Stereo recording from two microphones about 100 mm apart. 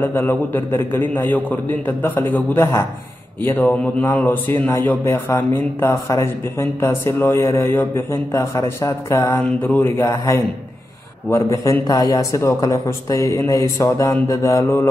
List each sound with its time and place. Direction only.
0.0 s a man's voice: 20° left (ahead or behind)
9.9 s a man's voice: 30° left (ahead or behind)